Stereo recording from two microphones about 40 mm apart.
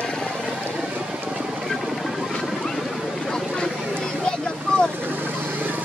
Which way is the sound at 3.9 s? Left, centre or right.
Centre.